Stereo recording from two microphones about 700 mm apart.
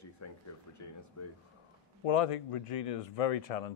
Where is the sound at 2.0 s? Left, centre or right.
Left.